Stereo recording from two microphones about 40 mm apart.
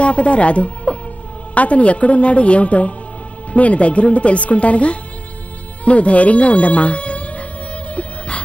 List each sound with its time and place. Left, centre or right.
0.0 s speech: left
5.9 s music: left